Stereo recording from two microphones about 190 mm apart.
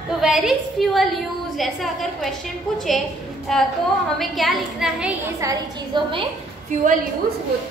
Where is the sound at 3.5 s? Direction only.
Centre (ahead or behind).